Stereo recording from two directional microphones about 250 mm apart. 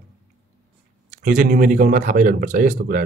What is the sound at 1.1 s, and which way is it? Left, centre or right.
Speech, right.